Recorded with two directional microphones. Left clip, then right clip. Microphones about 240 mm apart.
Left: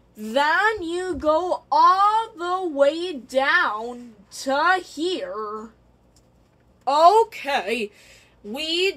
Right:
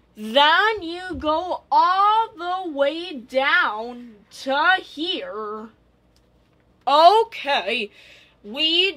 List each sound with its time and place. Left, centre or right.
0.1 s speech: right
6.8 s a woman's voice: right
7.2 s a woman's voice: centre